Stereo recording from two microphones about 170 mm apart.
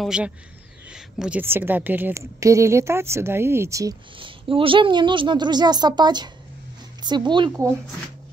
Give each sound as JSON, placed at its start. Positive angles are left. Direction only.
{"t": 0.0, "sound": "a woman's voice", "side_deg": -5}
{"t": 4.2, "sound": "speech", "side_deg": -30}